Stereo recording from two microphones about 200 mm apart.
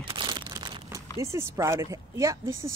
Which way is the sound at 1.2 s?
15° right (ahead or behind).